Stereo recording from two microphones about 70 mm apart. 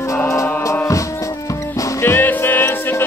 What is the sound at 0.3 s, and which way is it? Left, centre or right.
Music, left.